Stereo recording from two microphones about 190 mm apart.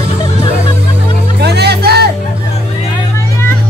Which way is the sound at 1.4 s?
60° right (ahead or behind).